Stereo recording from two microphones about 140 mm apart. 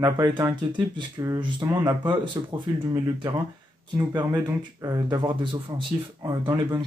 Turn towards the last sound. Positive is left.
turn(degrees=-25)  # may be behind; listen again after turning